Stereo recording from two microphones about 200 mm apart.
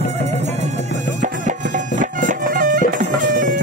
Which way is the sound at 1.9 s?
40° right (ahead or behind).